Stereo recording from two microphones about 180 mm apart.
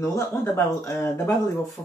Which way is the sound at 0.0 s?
15° left (ahead or behind).